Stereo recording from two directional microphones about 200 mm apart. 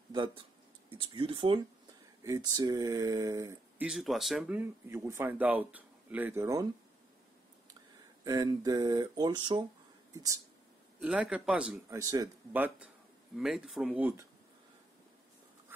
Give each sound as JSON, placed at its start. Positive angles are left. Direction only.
{"t": 0.1, "sound": "speech", "side_deg": -25}
{"t": 8.2, "sound": "speech", "side_deg": -20}
{"t": 11.0, "sound": "a man's voice", "side_deg": -5}
{"t": 12.0, "sound": "a man's voice", "side_deg": -15}